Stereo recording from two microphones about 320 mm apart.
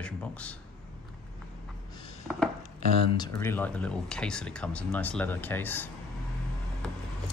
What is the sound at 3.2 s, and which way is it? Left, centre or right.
Speech, centre.